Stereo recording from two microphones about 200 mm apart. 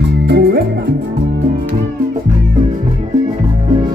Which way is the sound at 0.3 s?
55° right (ahead or behind).